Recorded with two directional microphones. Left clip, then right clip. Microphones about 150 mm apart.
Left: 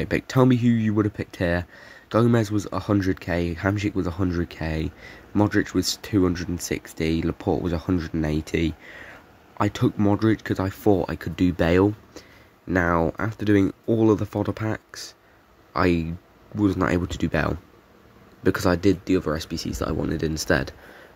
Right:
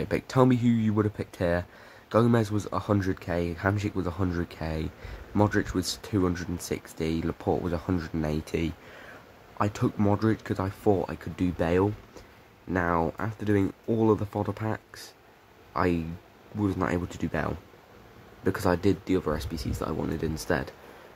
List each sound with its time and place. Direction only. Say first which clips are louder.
0.0 s speech: left 3 dB; 15° left (ahead or behind)